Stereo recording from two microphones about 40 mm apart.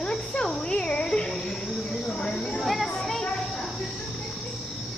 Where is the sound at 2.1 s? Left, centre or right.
Centre.